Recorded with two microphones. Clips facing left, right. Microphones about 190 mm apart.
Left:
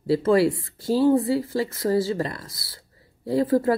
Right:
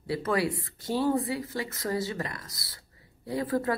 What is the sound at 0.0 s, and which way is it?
Speech, 30° left (ahead or behind).